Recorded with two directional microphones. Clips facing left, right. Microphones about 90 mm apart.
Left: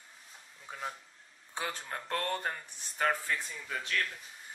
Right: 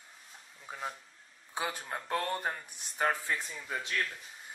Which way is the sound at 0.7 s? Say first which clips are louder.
Even; 5° right (ahead or behind).